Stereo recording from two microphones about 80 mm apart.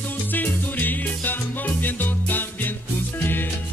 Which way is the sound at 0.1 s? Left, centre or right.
Left.